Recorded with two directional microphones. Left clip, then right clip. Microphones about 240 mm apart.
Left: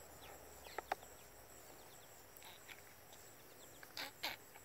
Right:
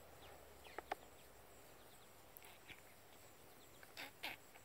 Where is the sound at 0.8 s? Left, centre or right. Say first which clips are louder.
Left 4 dB; right.